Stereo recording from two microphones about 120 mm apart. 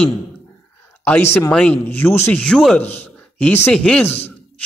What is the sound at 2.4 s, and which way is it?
A man's voice, 5° left (ahead or behind).